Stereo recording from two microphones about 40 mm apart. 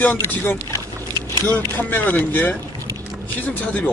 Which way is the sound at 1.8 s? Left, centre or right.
Left.